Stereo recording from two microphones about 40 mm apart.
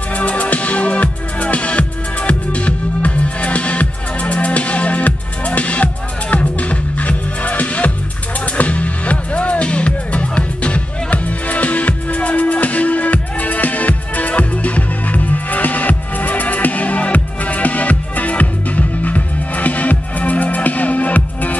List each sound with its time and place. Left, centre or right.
0.1 s music: left